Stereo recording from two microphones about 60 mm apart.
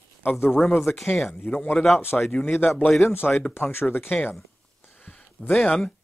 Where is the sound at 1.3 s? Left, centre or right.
Left.